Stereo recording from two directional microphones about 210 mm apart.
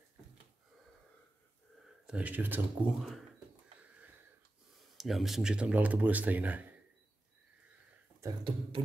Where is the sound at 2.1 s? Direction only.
5° right (ahead or behind).